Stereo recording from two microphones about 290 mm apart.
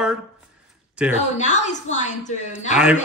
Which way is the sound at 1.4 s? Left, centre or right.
Left.